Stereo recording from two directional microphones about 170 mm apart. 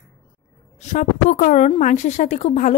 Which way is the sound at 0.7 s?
45° left (ahead or behind).